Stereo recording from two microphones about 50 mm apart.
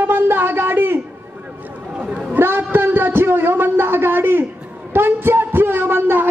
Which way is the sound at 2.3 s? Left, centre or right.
Right.